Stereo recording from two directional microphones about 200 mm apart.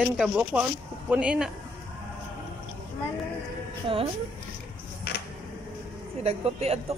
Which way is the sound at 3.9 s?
25° right (ahead or behind).